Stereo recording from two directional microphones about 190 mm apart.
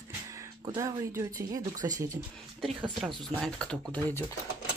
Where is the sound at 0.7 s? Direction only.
15° right (ahead or behind).